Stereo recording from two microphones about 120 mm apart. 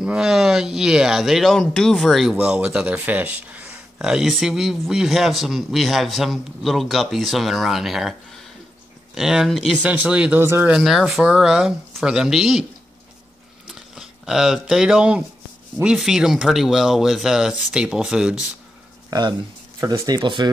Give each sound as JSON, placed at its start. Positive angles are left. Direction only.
{"t": 0.0, "sound": "speech", "side_deg": -5}
{"t": 10.4, "sound": "speech", "side_deg": -20}
{"t": 10.7, "sound": "speech", "side_deg": -5}
{"t": 13.7, "sound": "speech", "side_deg": -5}
{"t": 19.0, "sound": "speech", "side_deg": -35}